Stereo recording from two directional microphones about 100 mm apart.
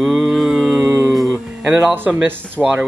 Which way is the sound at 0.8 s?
25° right (ahead or behind).